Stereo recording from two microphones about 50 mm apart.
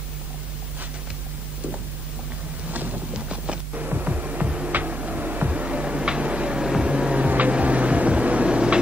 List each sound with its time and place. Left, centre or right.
2.7 s music: right
6.6 s vehicle: centre